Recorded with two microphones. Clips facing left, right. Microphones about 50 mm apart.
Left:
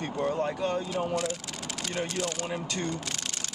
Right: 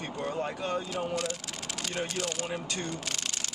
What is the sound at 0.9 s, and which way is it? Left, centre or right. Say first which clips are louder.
Speech: left 3 dB; centre.